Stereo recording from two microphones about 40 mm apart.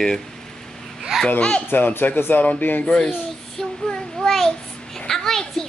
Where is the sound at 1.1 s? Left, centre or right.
Centre.